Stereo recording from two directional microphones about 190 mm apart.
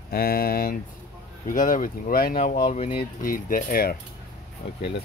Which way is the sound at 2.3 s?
40° left (ahead or behind).